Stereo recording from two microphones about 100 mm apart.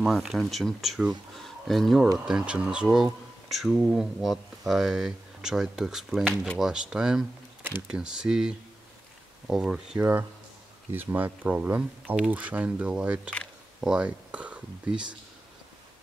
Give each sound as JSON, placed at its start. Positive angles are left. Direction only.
{"t": 0.0, "sound": "speech", "side_deg": 0}
{"t": 2.2, "sound": "speech", "side_deg": -10}
{"t": 6.2, "sound": "speech", "side_deg": 10}
{"t": 6.6, "sound": "speech", "side_deg": -5}
{"t": 10.9, "sound": "speech", "side_deg": -20}